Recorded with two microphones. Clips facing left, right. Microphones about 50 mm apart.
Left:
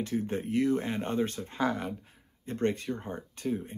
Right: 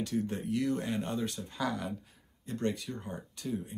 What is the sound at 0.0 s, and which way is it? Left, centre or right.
Speech, left.